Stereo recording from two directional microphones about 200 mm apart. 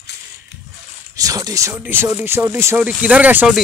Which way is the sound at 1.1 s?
15° right (ahead or behind).